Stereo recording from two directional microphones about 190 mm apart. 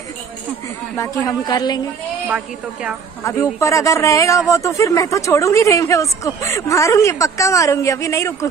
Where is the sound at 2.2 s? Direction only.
5° right (ahead or behind).